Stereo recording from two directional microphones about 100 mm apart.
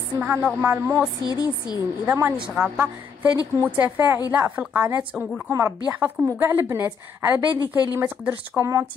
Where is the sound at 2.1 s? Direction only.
20° right (ahead or behind).